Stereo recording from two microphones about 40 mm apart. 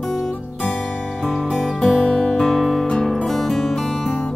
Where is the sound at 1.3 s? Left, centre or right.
Centre.